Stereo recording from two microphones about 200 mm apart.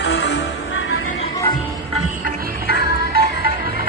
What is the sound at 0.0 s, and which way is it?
Music, 60° left (ahead or behind).